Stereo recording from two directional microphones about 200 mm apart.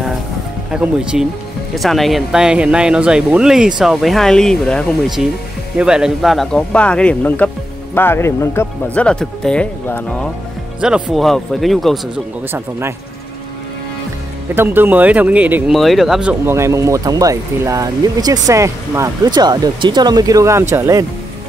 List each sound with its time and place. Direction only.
0.7 s speech: 5° right (ahead or behind)
10.8 s speech: 5° right (ahead or behind)
14.5 s speech: 10° right (ahead or behind)